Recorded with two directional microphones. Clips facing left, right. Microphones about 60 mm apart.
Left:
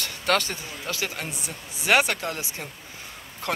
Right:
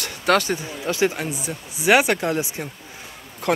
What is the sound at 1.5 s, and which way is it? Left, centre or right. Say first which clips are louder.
Speech: right 5 dB; centre.